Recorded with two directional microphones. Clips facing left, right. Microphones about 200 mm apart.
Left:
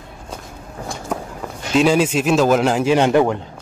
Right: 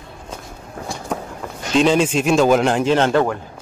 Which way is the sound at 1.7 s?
5° left (ahead or behind).